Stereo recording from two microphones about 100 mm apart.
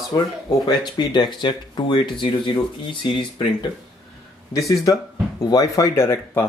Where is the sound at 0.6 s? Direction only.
45° left (ahead or behind).